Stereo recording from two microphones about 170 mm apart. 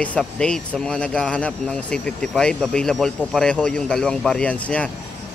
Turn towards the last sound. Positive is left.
turn(degrees=10)  # may be behind; listen again after turning